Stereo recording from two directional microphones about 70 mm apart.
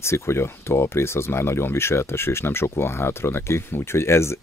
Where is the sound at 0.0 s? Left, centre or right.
Left.